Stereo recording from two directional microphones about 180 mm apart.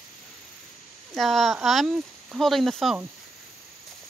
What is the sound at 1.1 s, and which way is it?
Speech, centre (ahead or behind).